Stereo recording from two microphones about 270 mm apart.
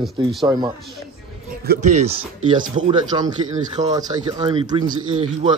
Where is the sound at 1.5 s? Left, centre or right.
Right.